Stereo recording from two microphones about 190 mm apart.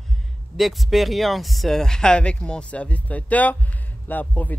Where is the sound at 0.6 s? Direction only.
Centre (ahead or behind).